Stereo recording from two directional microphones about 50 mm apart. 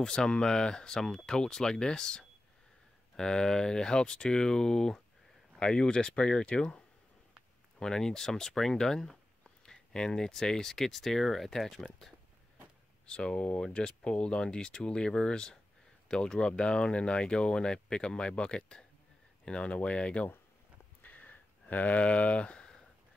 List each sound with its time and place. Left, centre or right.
0.0 s speech: centre
7.8 s speech: centre
13.0 s speech: centre
21.0 s a sound: left